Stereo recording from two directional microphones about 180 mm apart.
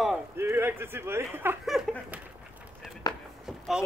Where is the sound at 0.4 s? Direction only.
15° right (ahead or behind).